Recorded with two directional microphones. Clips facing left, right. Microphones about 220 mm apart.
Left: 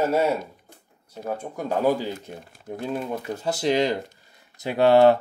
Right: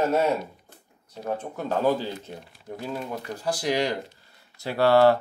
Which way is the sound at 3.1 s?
25° left (ahead or behind).